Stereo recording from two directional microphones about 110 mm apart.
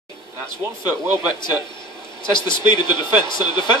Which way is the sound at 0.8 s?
15° right (ahead or behind).